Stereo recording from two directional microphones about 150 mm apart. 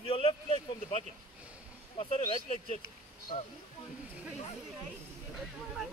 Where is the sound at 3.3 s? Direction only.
50° left (ahead or behind).